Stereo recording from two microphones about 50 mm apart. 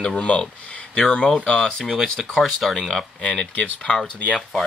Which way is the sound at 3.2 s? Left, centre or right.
Left.